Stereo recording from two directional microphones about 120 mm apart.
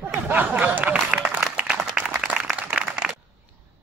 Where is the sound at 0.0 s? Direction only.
20° right (ahead or behind).